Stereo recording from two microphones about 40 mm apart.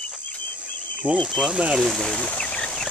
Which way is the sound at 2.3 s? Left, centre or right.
Left.